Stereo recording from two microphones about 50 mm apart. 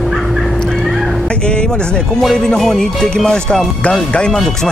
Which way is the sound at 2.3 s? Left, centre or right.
Centre.